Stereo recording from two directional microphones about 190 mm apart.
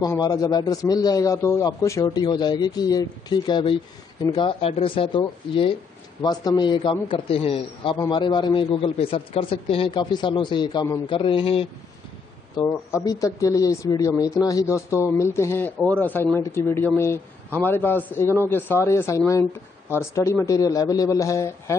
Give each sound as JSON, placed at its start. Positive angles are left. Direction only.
{"t": 0.0, "sound": "a man's voice", "side_deg": 20}